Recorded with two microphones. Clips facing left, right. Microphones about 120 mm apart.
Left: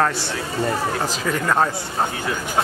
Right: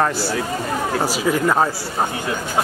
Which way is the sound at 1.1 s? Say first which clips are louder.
Right 4 dB; 10° right (ahead or behind).